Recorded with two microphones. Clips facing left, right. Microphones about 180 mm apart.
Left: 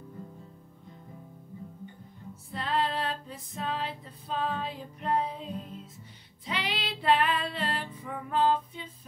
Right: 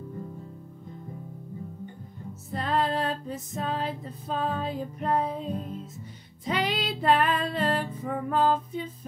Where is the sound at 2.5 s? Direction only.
45° right (ahead or behind).